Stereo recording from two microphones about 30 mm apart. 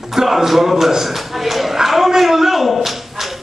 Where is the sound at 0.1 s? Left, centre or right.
Centre.